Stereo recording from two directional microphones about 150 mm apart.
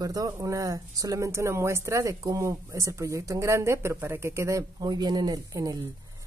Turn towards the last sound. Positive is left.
turn(degrees=-25)  # may be behind; listen again after turning